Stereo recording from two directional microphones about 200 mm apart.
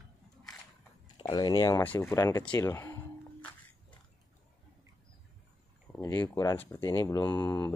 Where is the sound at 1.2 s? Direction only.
20° left (ahead or behind).